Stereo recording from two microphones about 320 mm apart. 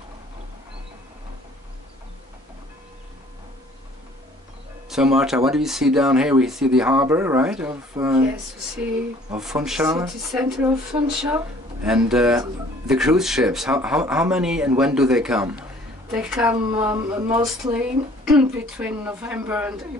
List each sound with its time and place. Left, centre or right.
4.8 s speech: centre
9.3 s speech: centre